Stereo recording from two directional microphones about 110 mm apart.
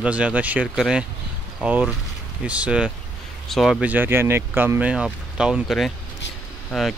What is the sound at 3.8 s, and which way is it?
Speech, 15° right (ahead or behind).